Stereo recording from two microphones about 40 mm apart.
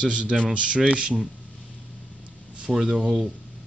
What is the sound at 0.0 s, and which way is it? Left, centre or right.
Speech, right.